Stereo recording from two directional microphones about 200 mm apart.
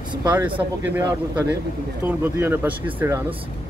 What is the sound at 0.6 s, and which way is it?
Speech, 10° right (ahead or behind).